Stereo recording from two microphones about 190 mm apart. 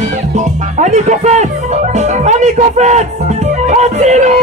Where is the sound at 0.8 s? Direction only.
35° right (ahead or behind).